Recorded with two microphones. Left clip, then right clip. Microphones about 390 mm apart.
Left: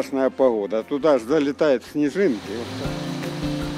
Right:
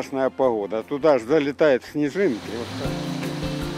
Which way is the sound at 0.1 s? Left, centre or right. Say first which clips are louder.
Left 1 dB; right.